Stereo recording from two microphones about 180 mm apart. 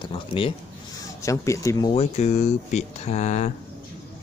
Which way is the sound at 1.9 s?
35° left (ahead or behind).